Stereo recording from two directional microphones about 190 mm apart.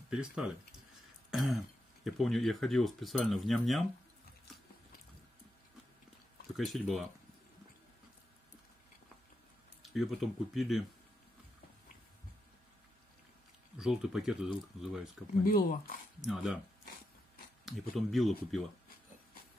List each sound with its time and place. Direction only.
0.1 s speech: 5° right (ahead or behind)
1.3 s throat clearing: centre (ahead or behind)
2.0 s speech: centre (ahead or behind)
6.5 s speech: centre (ahead or behind)
9.9 s speech: centre (ahead or behind)
13.7 s speech: centre (ahead or behind)
15.4 s speech: 45° left (ahead or behind)
16.2 s speech: centre (ahead or behind)
17.6 s speech: centre (ahead or behind)